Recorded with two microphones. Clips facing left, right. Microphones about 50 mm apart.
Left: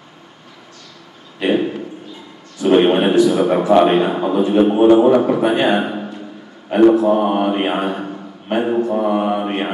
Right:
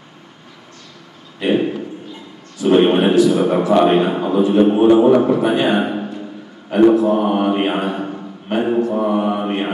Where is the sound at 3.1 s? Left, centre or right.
Left.